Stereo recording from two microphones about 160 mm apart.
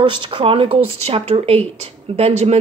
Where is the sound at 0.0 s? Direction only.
30° right (ahead or behind).